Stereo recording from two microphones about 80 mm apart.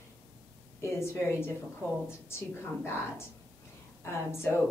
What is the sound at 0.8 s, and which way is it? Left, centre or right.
A woman's voice, left.